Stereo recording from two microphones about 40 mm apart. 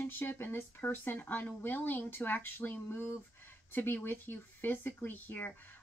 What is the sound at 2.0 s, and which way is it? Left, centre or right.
Speech, left.